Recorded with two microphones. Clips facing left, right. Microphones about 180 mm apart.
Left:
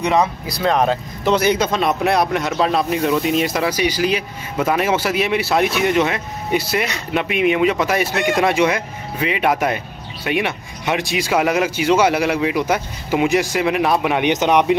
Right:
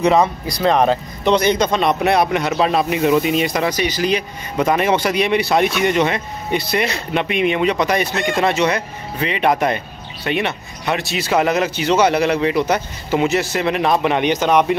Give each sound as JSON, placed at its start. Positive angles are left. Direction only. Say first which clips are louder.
{"t": 0.0, "sound": "speech", "louder": "right 3 dB", "side_deg": 0}